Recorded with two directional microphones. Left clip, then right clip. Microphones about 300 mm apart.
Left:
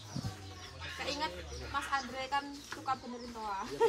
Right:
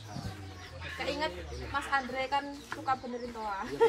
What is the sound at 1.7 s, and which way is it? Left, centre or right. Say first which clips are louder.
Speech: right 4 dB; centre.